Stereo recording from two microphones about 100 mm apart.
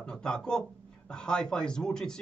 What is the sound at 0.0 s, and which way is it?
Speech, 5° left (ahead or behind).